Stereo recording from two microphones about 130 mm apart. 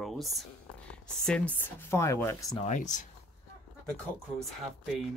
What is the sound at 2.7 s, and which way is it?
Speech, 70° left (ahead or behind).